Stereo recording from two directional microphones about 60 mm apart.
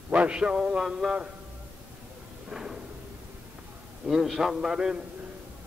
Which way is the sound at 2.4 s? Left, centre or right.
Centre.